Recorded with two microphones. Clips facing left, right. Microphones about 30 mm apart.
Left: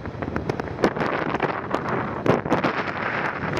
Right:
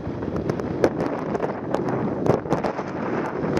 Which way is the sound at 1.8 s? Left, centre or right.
Left.